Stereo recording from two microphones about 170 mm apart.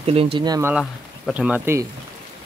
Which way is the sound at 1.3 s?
10° right (ahead or behind).